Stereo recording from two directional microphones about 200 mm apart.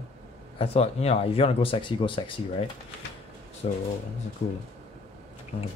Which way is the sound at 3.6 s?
30° left (ahead or behind).